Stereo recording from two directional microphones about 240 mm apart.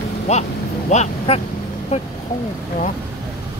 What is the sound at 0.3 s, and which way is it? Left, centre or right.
Speech, left.